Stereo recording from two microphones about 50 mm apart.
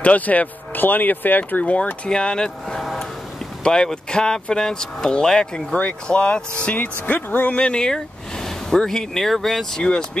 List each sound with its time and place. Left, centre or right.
0.0 s speech: left
1.6 s speech: left
2.0 s speech: centre
2.8 s a sound: centre
3.6 s speech: centre; by 7.5 s left
7.5 s speech: left